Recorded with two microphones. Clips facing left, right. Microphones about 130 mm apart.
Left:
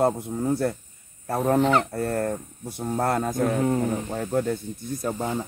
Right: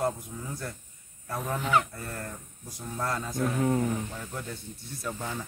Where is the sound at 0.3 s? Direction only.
55° left (ahead or behind).